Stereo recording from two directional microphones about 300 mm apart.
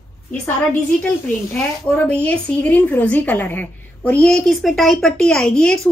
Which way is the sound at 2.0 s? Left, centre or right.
Centre.